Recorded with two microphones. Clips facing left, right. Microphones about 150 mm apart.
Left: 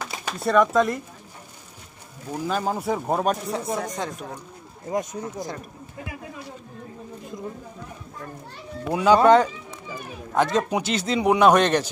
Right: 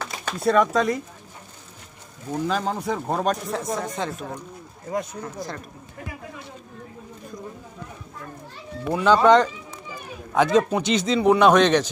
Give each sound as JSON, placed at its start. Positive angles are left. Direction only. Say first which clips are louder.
{"t": 0.4, "sound": "speech", "louder": "even", "side_deg": 0}
{"t": 2.3, "sound": "speech", "louder": "right 1 dB", "side_deg": 10}
{"t": 4.8, "sound": "speech", "louder": "left 1 dB", "side_deg": 20}
{"t": 8.8, "sound": "speech", "louder": "left 1 dB", "side_deg": 10}